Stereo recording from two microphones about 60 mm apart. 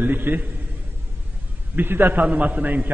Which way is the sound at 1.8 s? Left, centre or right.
Right.